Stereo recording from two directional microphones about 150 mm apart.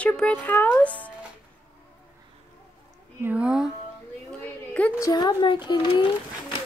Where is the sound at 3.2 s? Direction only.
10° right (ahead or behind).